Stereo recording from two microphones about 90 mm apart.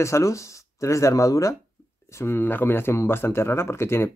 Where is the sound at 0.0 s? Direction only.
35° left (ahead or behind).